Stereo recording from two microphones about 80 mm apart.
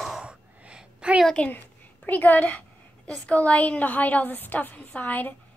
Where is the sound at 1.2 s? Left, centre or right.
Centre.